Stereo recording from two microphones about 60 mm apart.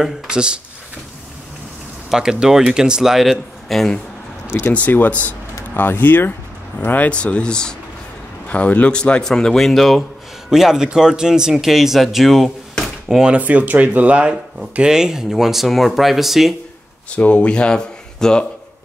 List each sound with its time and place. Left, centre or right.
0.0 s speech: centre
2.0 s speech: centre
4.5 s speech: left
4.7 s speech: left
7.1 s speech: centre
8.5 s speech: left; by 12.4 s centre
13.1 s speech: centre
13.4 s speech: right
14.6 s speech: centre
17.1 s speech: centre